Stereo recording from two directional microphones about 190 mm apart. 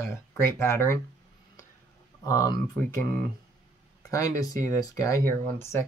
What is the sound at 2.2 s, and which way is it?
Speech, 20° left (ahead or behind).